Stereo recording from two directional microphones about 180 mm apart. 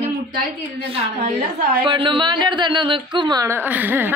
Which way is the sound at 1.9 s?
25° right (ahead or behind).